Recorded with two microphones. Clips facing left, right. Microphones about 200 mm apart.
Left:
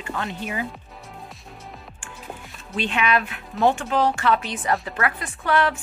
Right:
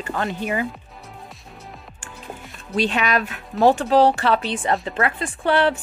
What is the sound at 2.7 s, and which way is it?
Speech, 40° right (ahead or behind).